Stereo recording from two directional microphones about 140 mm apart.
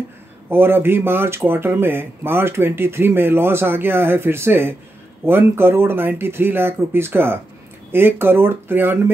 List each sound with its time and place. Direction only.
0.5 s speech: 15° right (ahead or behind)